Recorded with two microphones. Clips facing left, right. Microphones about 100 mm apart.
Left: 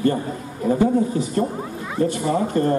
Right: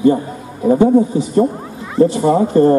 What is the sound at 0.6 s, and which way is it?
A man's voice, 25° right (ahead or behind).